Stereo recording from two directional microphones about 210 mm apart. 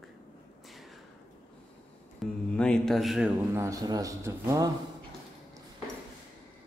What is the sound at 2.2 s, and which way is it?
A man's voice, 5° left (ahead or behind).